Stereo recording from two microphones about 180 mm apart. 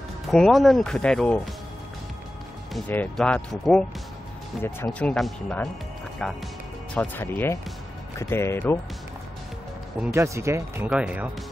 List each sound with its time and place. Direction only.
0.3 s speech: centre (ahead or behind)
2.9 s speech: 10° left (ahead or behind)
10.1 s speech: 15° right (ahead or behind)